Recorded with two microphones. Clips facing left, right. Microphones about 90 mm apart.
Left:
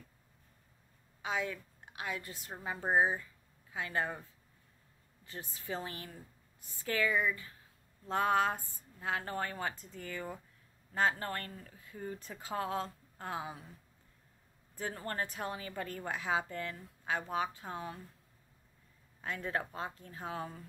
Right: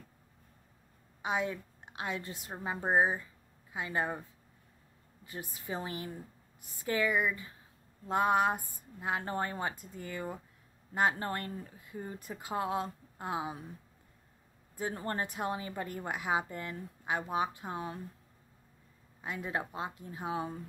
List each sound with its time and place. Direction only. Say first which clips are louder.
1.2 s a woman's voice: right 3 dB; 20° right (ahead or behind)
5.2 s a woman's voice: right 3 dB; 15° right (ahead or behind)
14.8 s speech: right 3 dB; 20° right (ahead or behind)
19.2 s speech: right 1 dB; 10° right (ahead or behind)